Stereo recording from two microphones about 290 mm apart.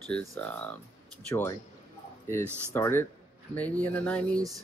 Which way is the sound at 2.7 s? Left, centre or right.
Centre.